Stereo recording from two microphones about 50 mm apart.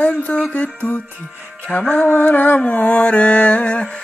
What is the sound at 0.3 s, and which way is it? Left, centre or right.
Mantra, left.